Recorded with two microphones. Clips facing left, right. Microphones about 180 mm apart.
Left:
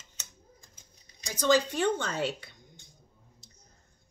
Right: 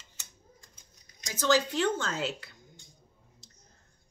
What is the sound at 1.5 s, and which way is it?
Speech, 5° right (ahead or behind).